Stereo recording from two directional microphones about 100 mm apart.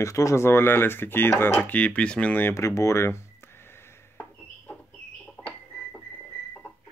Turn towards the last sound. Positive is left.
turn(degrees=15)  # may be behind; listen again after turning